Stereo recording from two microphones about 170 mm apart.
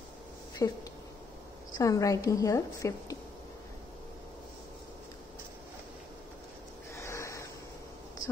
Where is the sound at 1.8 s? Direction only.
20° left (ahead or behind).